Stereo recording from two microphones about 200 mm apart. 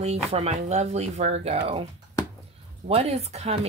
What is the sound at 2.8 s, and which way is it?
Speech, 30° right (ahead or behind).